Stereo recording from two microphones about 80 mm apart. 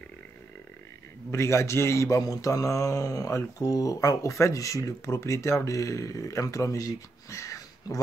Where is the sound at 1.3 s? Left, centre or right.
Left.